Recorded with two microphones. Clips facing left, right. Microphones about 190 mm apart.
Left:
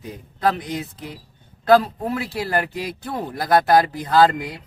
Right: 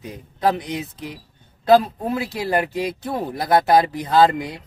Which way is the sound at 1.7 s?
20° right (ahead or behind).